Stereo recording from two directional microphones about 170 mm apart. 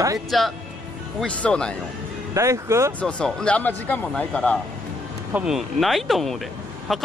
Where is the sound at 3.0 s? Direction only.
5° left (ahead or behind).